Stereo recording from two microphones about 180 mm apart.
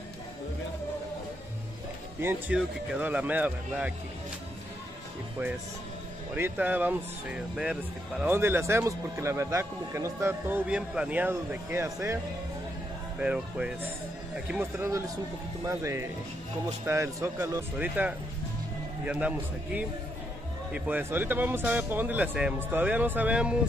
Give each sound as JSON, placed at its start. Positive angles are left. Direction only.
{"t": 2.2, "sound": "speech", "side_deg": -5}
{"t": 6.3, "sound": "speech", "side_deg": -10}
{"t": 13.2, "sound": "speech", "side_deg": -5}